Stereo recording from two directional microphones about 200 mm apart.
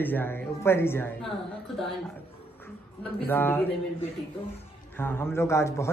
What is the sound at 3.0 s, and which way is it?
Speech, 10° left (ahead or behind).